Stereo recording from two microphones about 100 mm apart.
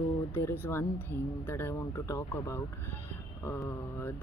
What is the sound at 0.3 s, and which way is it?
Speech, 25° left (ahead or behind).